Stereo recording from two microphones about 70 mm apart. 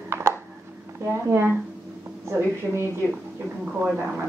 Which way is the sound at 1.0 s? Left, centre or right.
Right.